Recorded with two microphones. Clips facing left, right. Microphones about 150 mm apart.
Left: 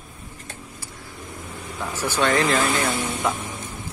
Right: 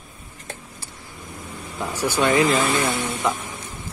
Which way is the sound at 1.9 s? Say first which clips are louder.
Right 2 dB; 10° right (ahead or behind).